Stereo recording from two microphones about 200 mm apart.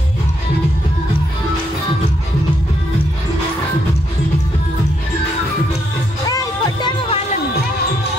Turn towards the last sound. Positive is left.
turn(degrees=20)  # may be behind; listen again after turning